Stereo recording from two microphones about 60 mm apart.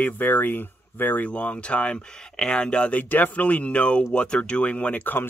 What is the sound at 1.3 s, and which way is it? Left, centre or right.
Speech, centre.